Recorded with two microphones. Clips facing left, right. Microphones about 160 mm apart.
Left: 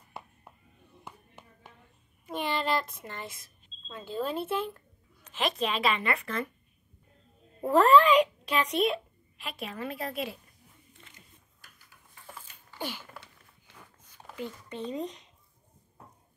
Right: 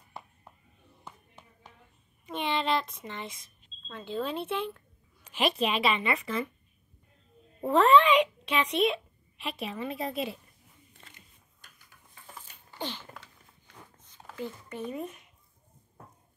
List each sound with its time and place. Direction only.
2.2 s a child's voice: 5° left (ahead or behind)
5.4 s a child's voice: 5° right (ahead or behind)
7.6 s a child's voice: centre (ahead or behind)
12.7 s a sound: 10° left (ahead or behind)
13.9 s writing: 10° left (ahead or behind)